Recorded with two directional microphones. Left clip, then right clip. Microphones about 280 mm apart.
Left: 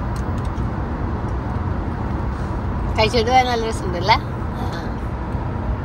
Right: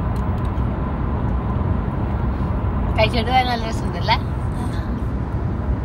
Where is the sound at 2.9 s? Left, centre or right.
Left.